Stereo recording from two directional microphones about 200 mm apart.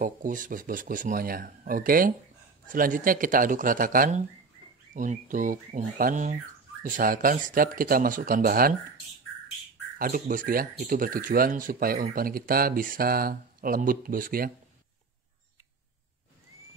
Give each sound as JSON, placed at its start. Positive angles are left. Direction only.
{"t": 0.0, "sound": "speech", "side_deg": -40}
{"t": 9.9, "sound": "speech", "side_deg": -45}